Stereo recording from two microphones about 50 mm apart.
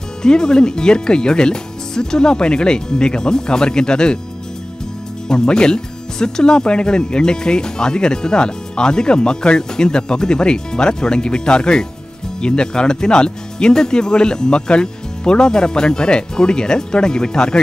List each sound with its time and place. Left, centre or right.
0.2 s speech: centre
5.3 s speech: centre